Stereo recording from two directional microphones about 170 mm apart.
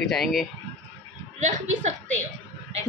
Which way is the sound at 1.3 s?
45° right (ahead or behind).